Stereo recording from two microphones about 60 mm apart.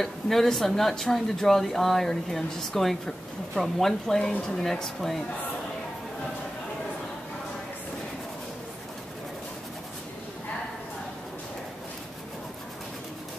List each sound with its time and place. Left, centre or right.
0.0 s speech: centre
4.2 s speech: centre
4.6 s speech: centre